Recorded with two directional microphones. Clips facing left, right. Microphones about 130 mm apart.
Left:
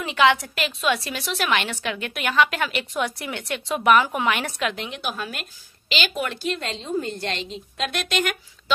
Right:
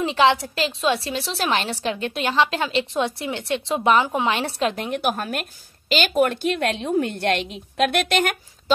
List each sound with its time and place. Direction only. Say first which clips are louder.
0.0 s a woman's voice: right 1 dB; 30° right (ahead or behind)
4.7 s a woman's voice: right 6 dB; 50° right (ahead or behind)